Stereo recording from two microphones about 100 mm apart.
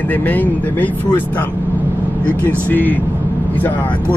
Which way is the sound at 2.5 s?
20° left (ahead or behind).